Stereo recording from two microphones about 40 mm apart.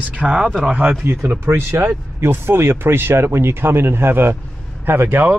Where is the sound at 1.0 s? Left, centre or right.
Right.